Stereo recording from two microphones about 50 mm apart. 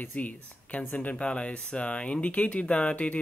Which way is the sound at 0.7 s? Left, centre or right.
Left.